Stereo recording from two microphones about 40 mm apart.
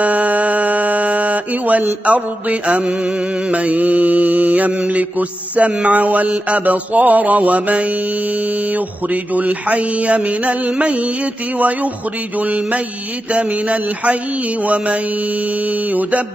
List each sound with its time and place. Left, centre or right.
0.0 s music: right
2.0 s mantra: right